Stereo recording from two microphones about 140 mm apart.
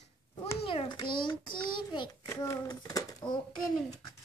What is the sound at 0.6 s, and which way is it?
A child's voice, 40° left (ahead or behind).